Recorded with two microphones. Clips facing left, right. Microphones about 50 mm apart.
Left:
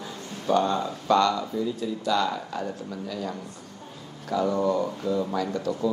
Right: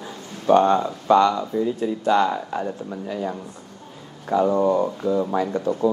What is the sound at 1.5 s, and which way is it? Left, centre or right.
Speech, right.